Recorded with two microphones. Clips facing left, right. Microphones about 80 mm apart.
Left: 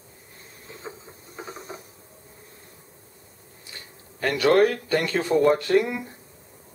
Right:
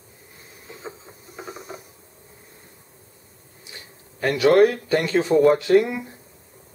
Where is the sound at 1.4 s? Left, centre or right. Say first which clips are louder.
Right 1 dB; centre.